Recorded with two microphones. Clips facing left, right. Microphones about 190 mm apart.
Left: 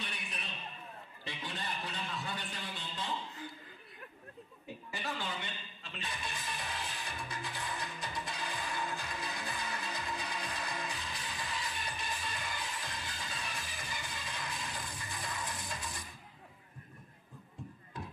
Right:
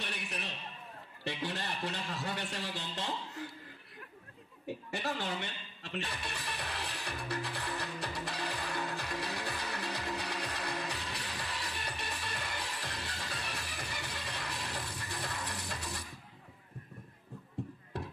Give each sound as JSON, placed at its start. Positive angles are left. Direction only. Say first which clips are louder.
{"t": 0.0, "sound": "a sound", "louder": "right 4 dB", "side_deg": -70}
{"t": 1.2, "sound": "a man's voice", "louder": "right 5 dB", "side_deg": -75}
{"t": 5.2, "sound": "music", "louder": "right 3 dB", "side_deg": -70}
{"t": 17.9, "sound": "music", "louder": "right 4 dB", "side_deg": -65}